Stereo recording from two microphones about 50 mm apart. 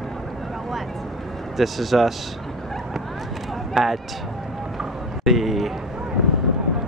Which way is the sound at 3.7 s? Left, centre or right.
Centre.